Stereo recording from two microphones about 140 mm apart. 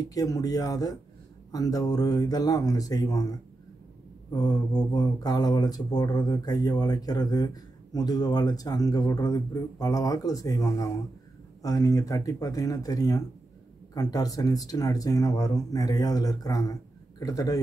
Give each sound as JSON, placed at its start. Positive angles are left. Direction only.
{"t": 0.1, "sound": "speech", "side_deg": 25}
{"t": 4.3, "sound": "speech", "side_deg": 30}